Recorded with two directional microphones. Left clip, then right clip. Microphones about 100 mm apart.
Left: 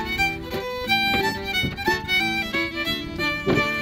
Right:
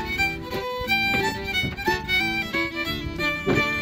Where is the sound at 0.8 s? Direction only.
20° left (ahead or behind).